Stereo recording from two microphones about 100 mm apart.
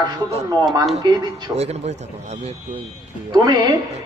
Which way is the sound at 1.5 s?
90° right.